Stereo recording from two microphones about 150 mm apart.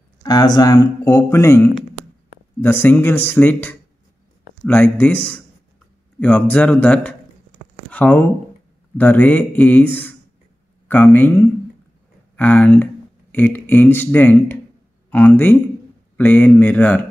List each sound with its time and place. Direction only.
0.2 s speech: 25° left (ahead or behind); by 17.0 s 10° left (ahead or behind)